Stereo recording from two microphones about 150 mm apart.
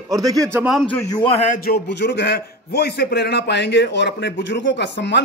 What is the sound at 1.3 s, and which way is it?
Speech, 50° left (ahead or behind).